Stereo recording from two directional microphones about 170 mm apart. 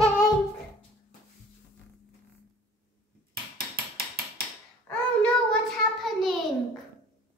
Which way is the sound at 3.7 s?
60° right (ahead or behind).